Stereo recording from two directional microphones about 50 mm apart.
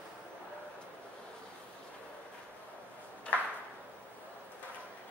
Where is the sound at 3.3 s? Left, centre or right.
Left.